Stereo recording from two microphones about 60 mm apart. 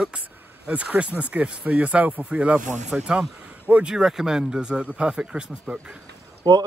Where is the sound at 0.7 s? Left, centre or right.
Right.